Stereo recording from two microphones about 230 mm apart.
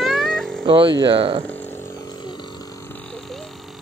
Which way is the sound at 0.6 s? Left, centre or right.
Right.